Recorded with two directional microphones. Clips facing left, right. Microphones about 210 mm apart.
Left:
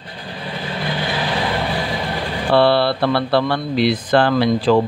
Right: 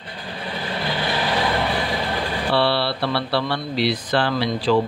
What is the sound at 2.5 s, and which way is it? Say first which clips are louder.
Speech: left 7 dB; 50° left (ahead or behind).